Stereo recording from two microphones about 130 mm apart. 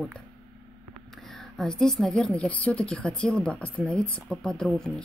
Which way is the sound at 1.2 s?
5° left (ahead or behind).